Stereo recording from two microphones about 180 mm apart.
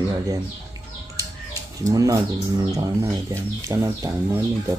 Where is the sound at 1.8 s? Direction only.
20° right (ahead or behind).